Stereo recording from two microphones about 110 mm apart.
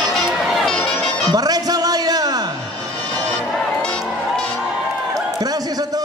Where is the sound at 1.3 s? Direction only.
35° right (ahead or behind).